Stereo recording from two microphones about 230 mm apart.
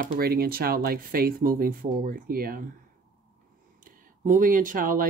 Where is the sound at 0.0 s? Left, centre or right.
Right.